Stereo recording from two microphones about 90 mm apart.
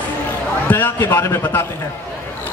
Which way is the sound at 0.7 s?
20° left (ahead or behind).